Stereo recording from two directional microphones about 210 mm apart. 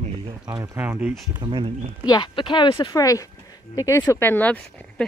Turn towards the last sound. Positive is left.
turn(degrees=5)  # may be behind; listen again after turning